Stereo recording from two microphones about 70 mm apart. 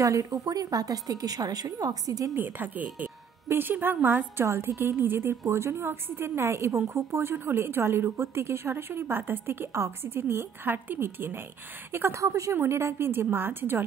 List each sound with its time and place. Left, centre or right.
0.0 s a woman's voice: right
2.3 s a woman's voice: right
4.5 s a woman's voice: right
12.2 s a woman's voice: right